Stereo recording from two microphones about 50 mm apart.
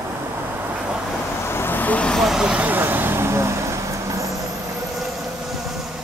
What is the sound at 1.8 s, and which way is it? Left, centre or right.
Vehicle, left.